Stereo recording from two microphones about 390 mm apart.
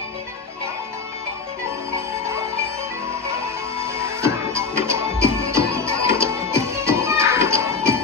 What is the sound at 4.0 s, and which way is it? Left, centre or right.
Music, centre.